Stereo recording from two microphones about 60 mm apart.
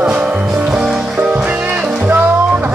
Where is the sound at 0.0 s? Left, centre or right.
Centre.